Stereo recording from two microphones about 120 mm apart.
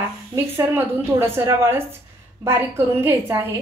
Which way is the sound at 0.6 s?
20° right (ahead or behind).